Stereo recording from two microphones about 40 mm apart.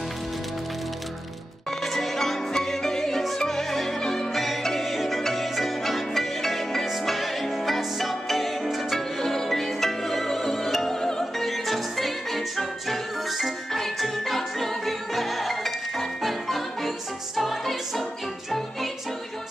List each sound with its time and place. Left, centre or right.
1.8 s music: centre
4.3 s music: centre
11.4 s music: centre